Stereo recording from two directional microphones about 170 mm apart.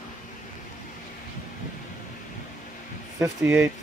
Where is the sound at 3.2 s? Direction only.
15° right (ahead or behind).